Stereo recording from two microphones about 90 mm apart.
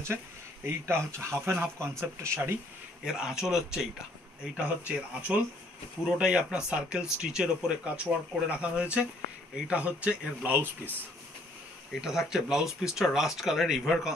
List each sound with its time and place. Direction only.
0.7 s speech: 30° right (ahead or behind)
3.1 s speech: 5° right (ahead or behind)
4.8 s speech: 15° right (ahead or behind)
11.9 s speech: 5° right (ahead or behind)